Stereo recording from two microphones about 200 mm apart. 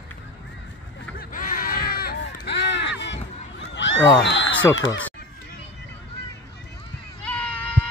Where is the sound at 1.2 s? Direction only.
45° left (ahead or behind); by 4.0 s 65° left (ahead or behind).